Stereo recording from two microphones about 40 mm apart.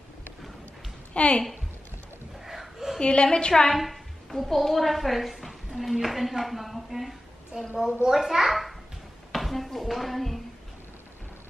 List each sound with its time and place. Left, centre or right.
1.1 s a woman's voice: left
2.4 s a sound: centre
3.0 s a woman's voice: left
3.7 s a woman's voice: centre
7.5 s a woman's voice: right
8.1 s a child's voice: centre